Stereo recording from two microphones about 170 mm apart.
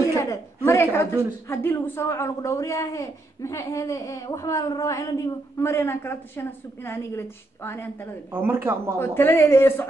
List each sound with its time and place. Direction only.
0.2 s a woman's voice: 15° left (ahead or behind)
8.3 s speech: 10° right (ahead or behind)
9.0 s a man's voice: 15° left (ahead or behind)